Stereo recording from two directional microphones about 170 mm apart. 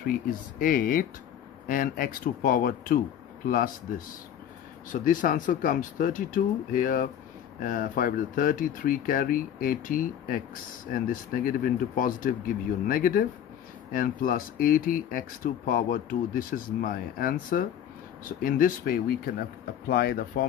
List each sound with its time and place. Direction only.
0.6 s speech: 55° left (ahead or behind)
4.9 s speech: 50° left (ahead or behind)